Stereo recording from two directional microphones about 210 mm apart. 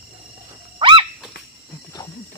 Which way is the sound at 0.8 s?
25° right (ahead or behind).